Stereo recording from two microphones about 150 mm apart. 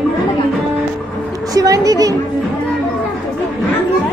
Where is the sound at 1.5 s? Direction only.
25° right (ahead or behind).